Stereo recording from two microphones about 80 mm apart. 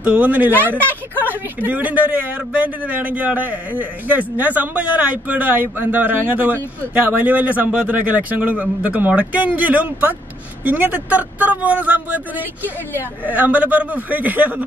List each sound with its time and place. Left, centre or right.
0.0 s a man's voice: centre